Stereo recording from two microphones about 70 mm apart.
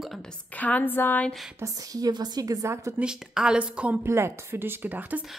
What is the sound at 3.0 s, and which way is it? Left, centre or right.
A woman's voice, centre.